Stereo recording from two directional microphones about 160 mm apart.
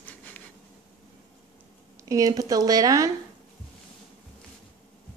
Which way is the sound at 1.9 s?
20° right (ahead or behind).